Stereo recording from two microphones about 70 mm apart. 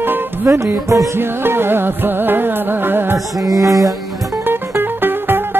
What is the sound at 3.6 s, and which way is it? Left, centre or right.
Music, right.